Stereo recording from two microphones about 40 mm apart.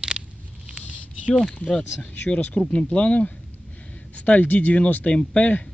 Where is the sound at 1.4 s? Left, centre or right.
Left.